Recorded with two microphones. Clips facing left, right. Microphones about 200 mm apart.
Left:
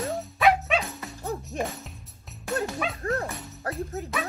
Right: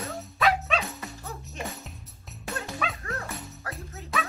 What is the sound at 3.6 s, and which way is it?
Speech, 40° left (ahead or behind).